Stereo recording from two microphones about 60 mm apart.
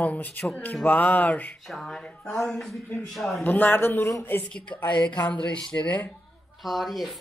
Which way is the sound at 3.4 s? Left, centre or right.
Left.